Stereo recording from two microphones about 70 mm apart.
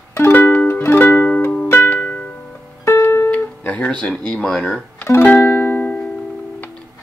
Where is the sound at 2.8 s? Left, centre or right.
Left.